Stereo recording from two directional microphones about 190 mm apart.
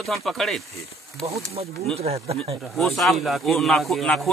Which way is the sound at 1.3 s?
30° right (ahead or behind).